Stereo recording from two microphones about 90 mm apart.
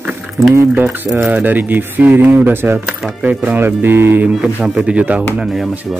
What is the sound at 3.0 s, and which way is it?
Speech, 10° right (ahead or behind).